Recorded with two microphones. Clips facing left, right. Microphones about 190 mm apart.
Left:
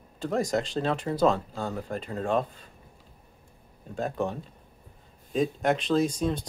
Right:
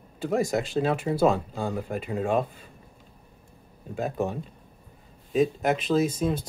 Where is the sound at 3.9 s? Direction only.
5° right (ahead or behind).